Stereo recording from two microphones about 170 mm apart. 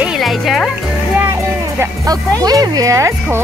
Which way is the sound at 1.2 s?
15° right (ahead or behind).